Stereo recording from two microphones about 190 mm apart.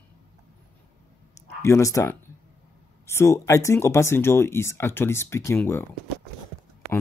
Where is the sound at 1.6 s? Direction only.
15° left (ahead or behind).